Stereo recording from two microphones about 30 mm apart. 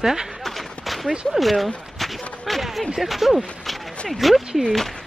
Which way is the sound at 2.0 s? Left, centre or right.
Centre.